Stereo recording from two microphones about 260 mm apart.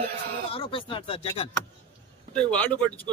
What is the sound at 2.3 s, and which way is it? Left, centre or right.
Speech, centre.